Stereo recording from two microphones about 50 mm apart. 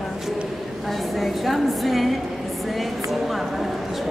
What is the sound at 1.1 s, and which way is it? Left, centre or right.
A woman's voice, centre.